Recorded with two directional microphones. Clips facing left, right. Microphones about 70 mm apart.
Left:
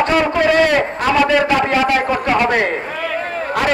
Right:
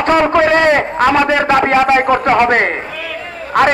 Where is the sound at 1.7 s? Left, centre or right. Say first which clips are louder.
Right 5 dB; right.